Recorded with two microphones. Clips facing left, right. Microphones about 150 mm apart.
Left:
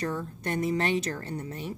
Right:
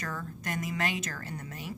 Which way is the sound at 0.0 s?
30° left (ahead or behind).